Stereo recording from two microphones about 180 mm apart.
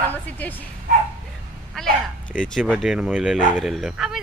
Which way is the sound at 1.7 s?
Centre (ahead or behind).